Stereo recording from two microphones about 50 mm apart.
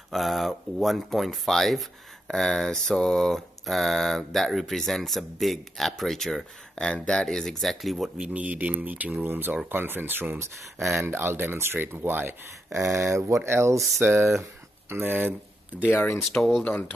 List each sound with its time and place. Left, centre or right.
0.1 s speech: centre
6.7 s speech: centre
8.2 s speech: right
8.5 s speech: right
12.8 s speech: right
13.4 s speech: right
14.0 s speech: right
16.2 s speech: centre